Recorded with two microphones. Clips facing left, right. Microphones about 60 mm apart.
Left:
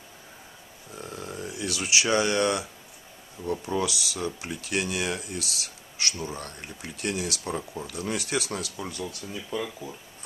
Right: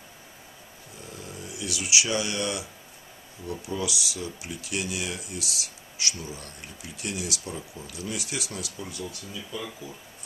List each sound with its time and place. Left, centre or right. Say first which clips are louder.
1.5 s speech: left 1 dB; left